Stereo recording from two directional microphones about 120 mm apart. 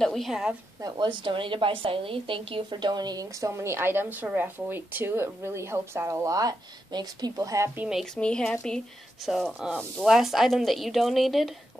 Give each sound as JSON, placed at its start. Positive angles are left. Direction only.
{"t": 0.0, "sound": "speech", "side_deg": 0}
{"t": 0.7, "sound": "a woman's voice", "side_deg": -35}
{"t": 8.0, "sound": "speech", "side_deg": 5}